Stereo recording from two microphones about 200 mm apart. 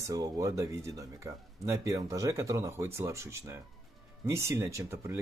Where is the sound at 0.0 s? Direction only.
15° right (ahead or behind).